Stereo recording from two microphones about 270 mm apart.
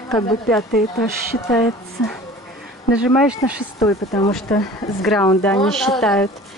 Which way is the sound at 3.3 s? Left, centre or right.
Centre.